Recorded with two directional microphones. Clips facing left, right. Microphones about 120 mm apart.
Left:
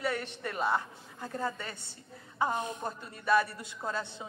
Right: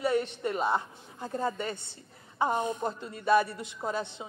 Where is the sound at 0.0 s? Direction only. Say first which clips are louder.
Right 6 dB; 20° right (ahead or behind).